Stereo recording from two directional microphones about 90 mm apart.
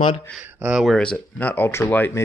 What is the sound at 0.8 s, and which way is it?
Speech, 10° left (ahead or behind).